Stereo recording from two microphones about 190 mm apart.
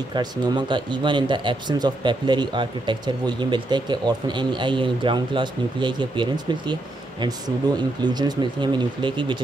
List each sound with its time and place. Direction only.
0.1 s speech: 20° right (ahead or behind)